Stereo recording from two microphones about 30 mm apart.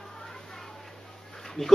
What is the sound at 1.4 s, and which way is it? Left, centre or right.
Dog, centre.